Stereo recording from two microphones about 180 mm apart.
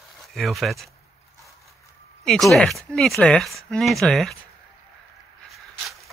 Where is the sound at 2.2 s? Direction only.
Centre (ahead or behind).